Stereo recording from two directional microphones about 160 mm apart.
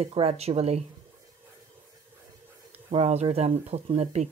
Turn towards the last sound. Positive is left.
turn(degrees=-45)  # may be behind; listen again after turning